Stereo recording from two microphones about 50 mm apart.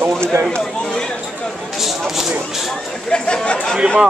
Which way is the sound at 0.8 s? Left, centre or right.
Centre.